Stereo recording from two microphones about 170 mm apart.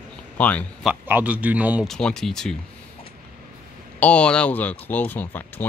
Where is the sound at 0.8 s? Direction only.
10° right (ahead or behind).